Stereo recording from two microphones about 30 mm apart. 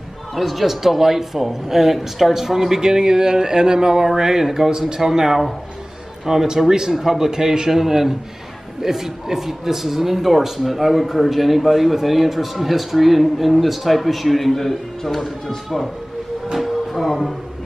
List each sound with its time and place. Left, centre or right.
0.4 s speech: centre
0.7 s speech: centre
16.5 s music: centre